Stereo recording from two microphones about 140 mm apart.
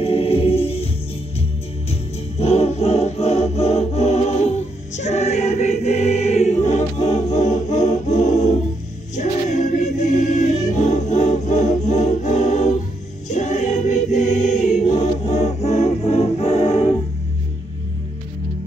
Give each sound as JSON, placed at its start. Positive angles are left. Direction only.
{"t": 0.0, "sound": "music", "side_deg": 45}
{"t": 1.9, "sound": "music", "side_deg": 50}
{"t": 9.1, "sound": "choir", "side_deg": 55}